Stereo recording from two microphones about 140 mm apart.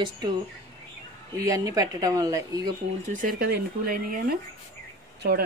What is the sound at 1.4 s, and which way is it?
Speech, 25° right (ahead or behind).